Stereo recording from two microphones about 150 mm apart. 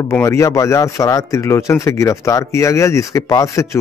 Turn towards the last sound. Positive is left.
turn(degrees=20)  # may be behind; listen again after turning